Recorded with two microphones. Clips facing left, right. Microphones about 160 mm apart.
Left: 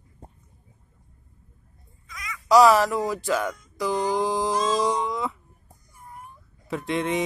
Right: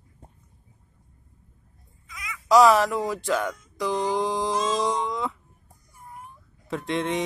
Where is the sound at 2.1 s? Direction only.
5° right (ahead or behind).